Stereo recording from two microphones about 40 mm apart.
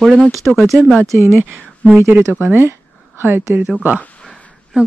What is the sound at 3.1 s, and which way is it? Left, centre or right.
Speech, right.